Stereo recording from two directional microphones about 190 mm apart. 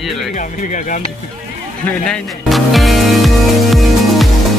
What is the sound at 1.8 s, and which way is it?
Speech, 5° left (ahead or behind).